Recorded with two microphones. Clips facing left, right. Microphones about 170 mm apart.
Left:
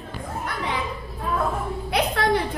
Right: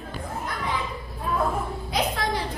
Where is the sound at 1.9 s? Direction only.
65° left (ahead or behind).